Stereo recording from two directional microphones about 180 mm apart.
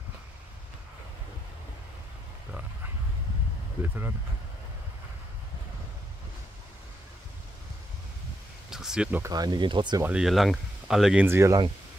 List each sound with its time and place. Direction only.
3.8 s speech: 10° right (ahead or behind)
8.6 s a sound: 5° right (ahead or behind)
9.2 s speech: 20° right (ahead or behind)
10.0 s speech: 5° right (ahead or behind)
11.2 s speech: 15° right (ahead or behind)